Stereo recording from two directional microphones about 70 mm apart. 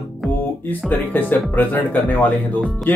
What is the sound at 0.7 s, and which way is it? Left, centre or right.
Speech, left.